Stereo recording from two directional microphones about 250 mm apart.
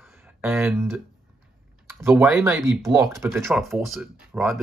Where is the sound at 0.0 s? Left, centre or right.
Centre.